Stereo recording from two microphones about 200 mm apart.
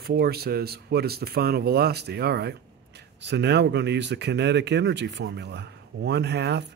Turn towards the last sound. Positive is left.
turn(degrees=-55)  # may be behind; listen again after turning